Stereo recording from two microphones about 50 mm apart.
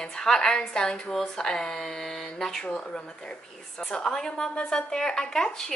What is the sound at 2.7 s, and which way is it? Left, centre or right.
A woman's voice, left.